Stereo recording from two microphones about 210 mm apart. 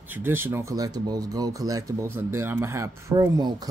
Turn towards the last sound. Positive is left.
turn(degrees=-20)  # may be behind; listen again after turning